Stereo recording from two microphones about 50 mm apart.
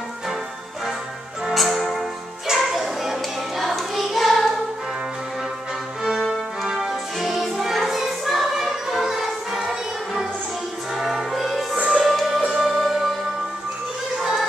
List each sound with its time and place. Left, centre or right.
1.5 s music: centre
6.0 s music: centre
11.7 s music: centre
12.0 s music: centre